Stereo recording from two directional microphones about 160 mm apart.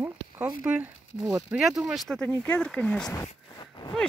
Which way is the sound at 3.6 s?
25° left (ahead or behind).